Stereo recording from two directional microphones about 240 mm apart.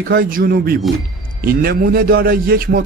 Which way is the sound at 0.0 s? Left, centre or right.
Right.